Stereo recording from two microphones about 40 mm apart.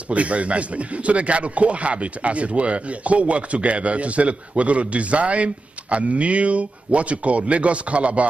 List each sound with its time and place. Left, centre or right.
0.1 s speech: right